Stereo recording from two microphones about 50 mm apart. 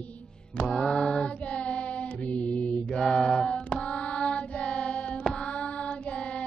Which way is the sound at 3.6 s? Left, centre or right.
Centre.